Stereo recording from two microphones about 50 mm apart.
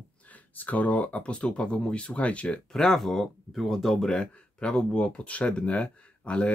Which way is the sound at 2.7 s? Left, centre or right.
Centre.